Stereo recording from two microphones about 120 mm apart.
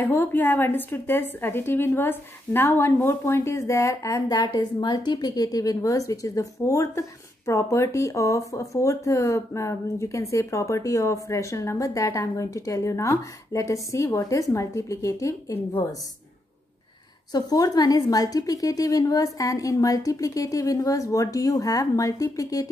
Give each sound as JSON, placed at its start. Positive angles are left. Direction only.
{"t": 0.0, "sound": "a woman's voice", "side_deg": 15}
{"t": 17.3, "sound": "a woman's voice", "side_deg": 30}